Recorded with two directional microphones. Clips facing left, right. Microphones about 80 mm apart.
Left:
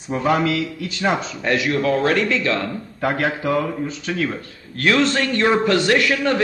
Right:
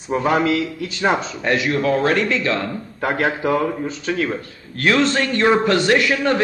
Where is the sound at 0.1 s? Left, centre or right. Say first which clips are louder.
Right 1 dB; right.